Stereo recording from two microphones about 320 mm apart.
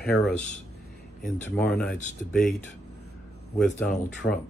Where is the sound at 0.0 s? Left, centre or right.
Left.